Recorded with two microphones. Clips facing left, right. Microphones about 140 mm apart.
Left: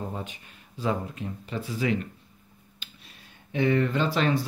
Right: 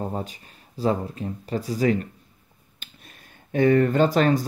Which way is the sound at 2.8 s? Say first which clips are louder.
Right 2 dB; 45° right (ahead or behind).